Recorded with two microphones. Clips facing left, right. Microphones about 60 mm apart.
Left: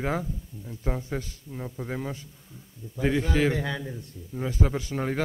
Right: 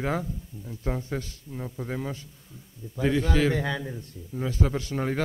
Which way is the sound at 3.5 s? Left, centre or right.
Right.